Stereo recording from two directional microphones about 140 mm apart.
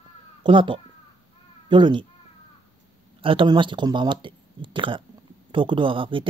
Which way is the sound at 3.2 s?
35° right (ahead or behind).